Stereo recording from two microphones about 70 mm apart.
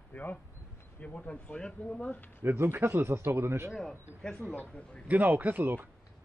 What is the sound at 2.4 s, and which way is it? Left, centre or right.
Speech, right.